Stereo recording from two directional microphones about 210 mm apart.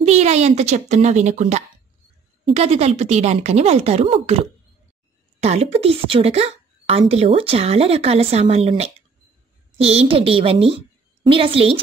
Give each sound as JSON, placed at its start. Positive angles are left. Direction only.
{"t": 0.0, "sound": "a woman's voice", "side_deg": -30}